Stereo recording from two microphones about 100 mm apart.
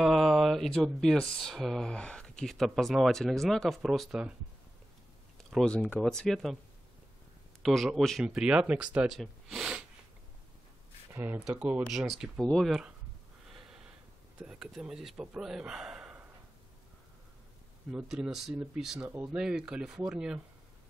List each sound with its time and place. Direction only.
0.0 s speech: centre (ahead or behind)
5.7 s speech: 10° left (ahead or behind)
7.6 s speech: centre (ahead or behind)
11.5 s speech: 15° right (ahead or behind); by 12.7 s 5° left (ahead or behind)
13.5 s a sound: 5° right (ahead or behind)
14.4 s speech: 5° right (ahead or behind)
17.9 s speech: 5° right (ahead or behind)
18.9 s speech: 20° right (ahead or behind)
19.3 s speech: 10° right (ahead or behind)